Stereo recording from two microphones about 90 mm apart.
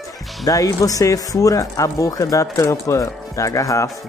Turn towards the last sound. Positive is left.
turn(degrees=40)  # may be behind; listen again after turning